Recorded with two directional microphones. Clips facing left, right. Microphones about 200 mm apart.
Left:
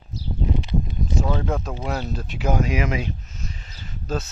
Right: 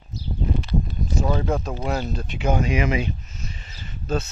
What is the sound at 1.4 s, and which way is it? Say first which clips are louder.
Speech: right 2 dB; centre (ahead or behind).